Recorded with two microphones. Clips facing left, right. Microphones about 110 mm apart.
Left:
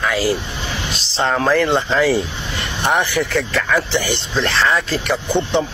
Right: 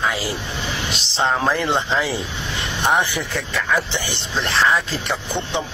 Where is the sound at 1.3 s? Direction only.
15° right (ahead or behind).